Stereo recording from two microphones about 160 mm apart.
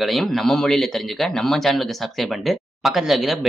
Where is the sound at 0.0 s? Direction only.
Centre (ahead or behind).